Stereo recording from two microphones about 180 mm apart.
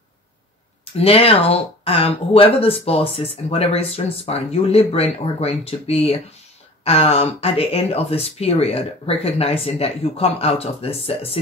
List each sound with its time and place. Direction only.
0.9 s speech: 35° left (ahead or behind)